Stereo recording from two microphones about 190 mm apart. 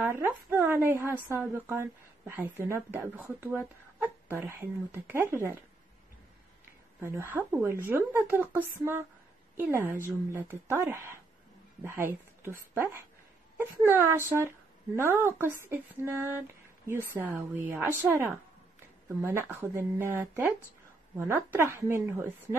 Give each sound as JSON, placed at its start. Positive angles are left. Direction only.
{"t": 0.0, "sound": "a woman's voice", "side_deg": -10}
{"t": 7.0, "sound": "a woman's voice", "side_deg": -15}